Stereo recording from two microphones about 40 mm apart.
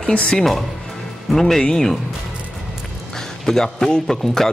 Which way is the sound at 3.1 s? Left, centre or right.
Centre.